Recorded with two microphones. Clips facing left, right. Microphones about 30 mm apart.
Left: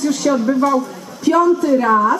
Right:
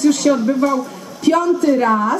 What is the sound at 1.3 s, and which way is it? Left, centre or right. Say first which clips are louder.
Speech: left 1 dB; right.